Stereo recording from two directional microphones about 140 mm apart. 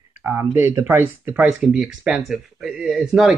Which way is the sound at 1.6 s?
Centre (ahead or behind).